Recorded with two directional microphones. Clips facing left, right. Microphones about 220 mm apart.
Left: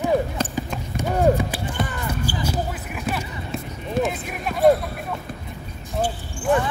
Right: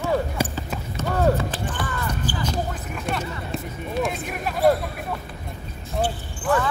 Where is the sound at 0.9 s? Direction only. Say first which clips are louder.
Left 2 dB; 15° left (ahead or behind).